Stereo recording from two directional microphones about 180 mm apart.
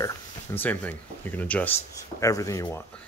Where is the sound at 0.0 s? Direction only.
10° left (ahead or behind).